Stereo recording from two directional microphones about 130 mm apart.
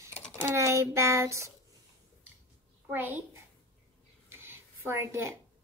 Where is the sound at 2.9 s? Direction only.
15° right (ahead or behind).